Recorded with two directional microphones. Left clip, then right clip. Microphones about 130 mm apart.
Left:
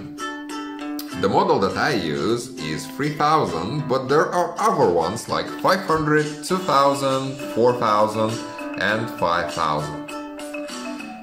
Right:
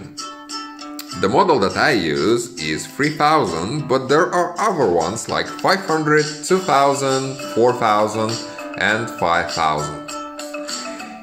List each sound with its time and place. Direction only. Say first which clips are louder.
1.2 s speech: right 3 dB; 20° right (ahead or behind)